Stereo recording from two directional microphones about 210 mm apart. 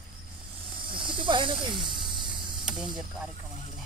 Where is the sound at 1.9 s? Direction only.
20° right (ahead or behind).